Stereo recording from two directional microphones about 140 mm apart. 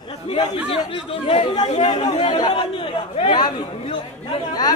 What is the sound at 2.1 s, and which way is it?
Speech, 40° left (ahead or behind).